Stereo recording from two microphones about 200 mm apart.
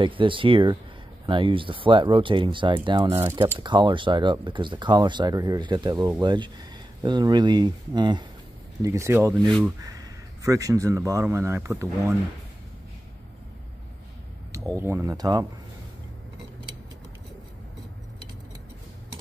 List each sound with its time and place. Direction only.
0.0 s speech: 25° right (ahead or behind)
3.1 s speech: 10° right (ahead or behind)
3.5 s speech: 25° right (ahead or behind)
14.8 s speech: 15° right (ahead or behind)